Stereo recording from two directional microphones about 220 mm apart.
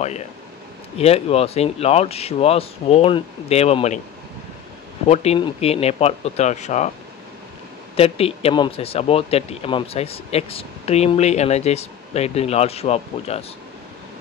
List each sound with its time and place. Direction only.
0.9 s speech: 30° left (ahead or behind)
5.0 s speech: 30° left (ahead or behind)
7.9 s speech: 25° left (ahead or behind)